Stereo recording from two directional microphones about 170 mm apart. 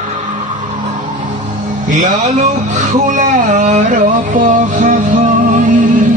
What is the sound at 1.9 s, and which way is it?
Speech, 45° right (ahead or behind).